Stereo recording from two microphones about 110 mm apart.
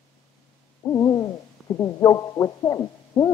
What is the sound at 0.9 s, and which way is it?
Owl, 30° left (ahead or behind).